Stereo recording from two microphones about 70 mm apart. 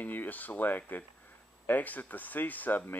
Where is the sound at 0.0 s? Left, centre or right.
Left.